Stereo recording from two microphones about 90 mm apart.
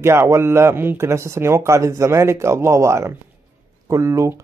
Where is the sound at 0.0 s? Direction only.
30° right (ahead or behind).